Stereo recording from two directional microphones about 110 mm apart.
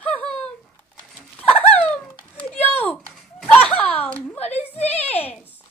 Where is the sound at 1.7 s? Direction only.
10° left (ahead or behind).